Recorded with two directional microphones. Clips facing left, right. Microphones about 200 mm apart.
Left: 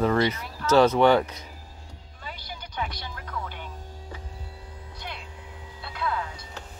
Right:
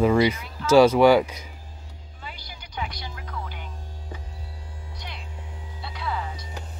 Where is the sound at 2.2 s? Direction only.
50° left (ahead or behind).